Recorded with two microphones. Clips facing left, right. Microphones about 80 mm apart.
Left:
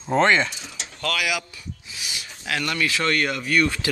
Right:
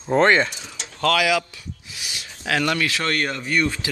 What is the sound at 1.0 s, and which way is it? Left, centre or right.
Speech, right.